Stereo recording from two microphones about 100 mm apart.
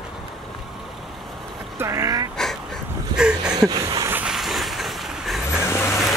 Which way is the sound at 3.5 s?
40° right (ahead or behind).